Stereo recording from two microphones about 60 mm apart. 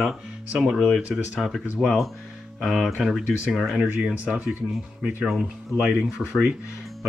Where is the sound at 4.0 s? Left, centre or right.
Right.